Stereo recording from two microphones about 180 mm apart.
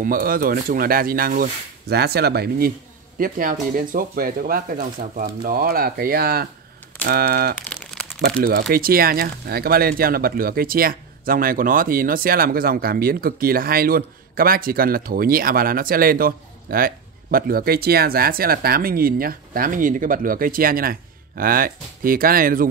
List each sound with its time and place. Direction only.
0.0 s speech: 55° right (ahead or behind)
7.7 s crumpling: 5° left (ahead or behind)
8.7 s speech: 55° right (ahead or behind)